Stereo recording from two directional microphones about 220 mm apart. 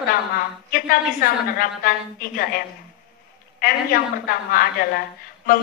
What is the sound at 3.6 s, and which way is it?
A woman's voice, 40° left (ahead or behind).